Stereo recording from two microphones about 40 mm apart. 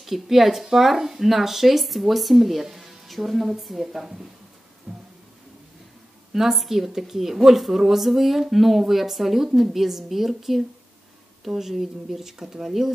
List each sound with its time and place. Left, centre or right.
0.0 s speech: centre
4.9 s a sound: centre
6.3 s speech: centre